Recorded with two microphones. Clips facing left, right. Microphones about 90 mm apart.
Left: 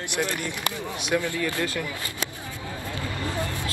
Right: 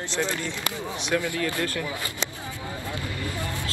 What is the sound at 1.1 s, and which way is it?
Speech, 10° left (ahead or behind).